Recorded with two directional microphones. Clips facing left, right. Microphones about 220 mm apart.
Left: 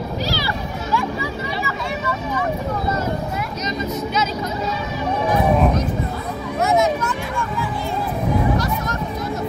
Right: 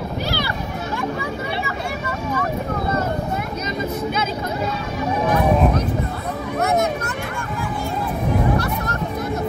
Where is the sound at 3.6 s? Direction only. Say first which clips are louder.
Even; 55° right (ahead or behind).